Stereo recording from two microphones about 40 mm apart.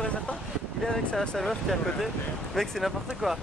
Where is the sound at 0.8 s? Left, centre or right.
Centre.